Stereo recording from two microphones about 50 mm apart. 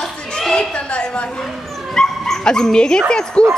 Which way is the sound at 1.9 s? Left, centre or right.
Centre.